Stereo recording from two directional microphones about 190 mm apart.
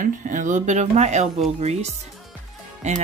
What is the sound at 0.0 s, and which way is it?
Speech, 40° right (ahead or behind).